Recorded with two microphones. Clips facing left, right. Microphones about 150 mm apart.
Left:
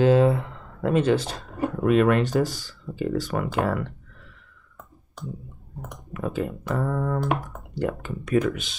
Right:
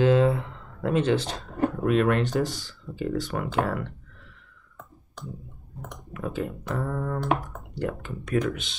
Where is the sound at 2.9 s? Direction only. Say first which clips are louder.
Left 4 dB; 45° left (ahead or behind).